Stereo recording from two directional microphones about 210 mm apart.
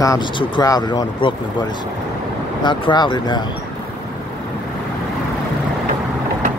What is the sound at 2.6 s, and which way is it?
Speech, 20° left (ahead or behind).